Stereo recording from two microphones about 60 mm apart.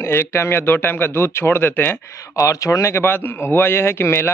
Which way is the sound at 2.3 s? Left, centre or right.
Left.